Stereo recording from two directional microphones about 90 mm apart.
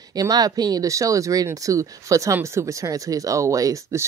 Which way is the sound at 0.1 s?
45° right (ahead or behind).